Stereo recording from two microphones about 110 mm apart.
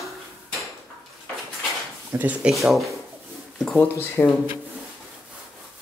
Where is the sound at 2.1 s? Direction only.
15° right (ahead or behind).